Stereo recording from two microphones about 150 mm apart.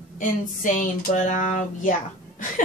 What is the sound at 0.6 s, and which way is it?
Speech, 60° left (ahead or behind).